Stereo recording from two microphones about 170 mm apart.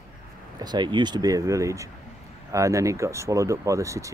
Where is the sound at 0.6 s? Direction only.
25° right (ahead or behind).